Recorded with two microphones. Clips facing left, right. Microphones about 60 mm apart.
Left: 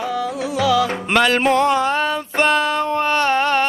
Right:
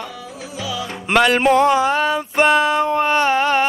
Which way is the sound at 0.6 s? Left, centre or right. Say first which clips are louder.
Left 10 dB; left.